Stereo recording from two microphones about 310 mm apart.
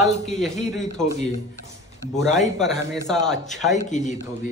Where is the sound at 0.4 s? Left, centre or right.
Centre.